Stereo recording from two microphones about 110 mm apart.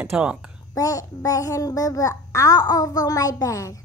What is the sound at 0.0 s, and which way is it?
Speech, 10° right (ahead or behind).